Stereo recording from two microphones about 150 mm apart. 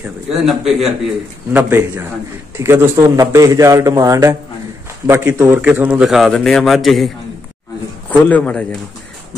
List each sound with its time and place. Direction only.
0.0 s a man's voice: centre (ahead or behind)
1.5 s a man's voice: 15° right (ahead or behind); by 7.1 s centre (ahead or behind)
8.1 s a man's voice: 10° left (ahead or behind)